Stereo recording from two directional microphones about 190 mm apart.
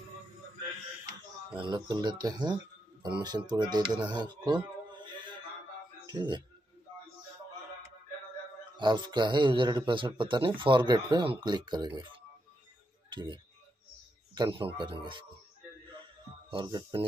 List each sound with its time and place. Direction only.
1.6 s speech: 20° right (ahead or behind)
6.0 s speech: 20° right (ahead or behind)
8.7 s speech: 25° right (ahead or behind)
13.1 s a man's voice: 25° right (ahead or behind)
16.4 s speech: 25° right (ahead or behind)